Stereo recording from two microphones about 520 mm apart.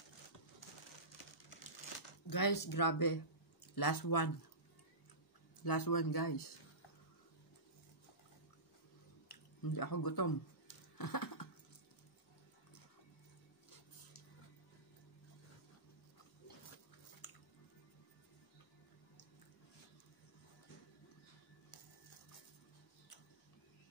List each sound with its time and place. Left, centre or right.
2.2 s speech: left
5.6 s speech: left
9.3 s a sound: left